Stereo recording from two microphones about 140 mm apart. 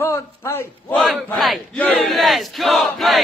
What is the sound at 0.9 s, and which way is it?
Speech, 5° left (ahead or behind).